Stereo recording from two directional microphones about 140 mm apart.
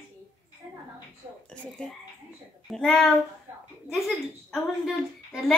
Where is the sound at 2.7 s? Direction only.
5° left (ahead or behind).